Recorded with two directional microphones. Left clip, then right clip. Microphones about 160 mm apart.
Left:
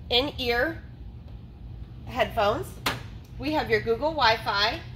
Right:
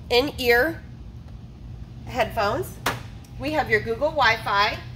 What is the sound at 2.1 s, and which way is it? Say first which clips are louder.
A woman's voice: right 1 dB; 15° right (ahead or behind).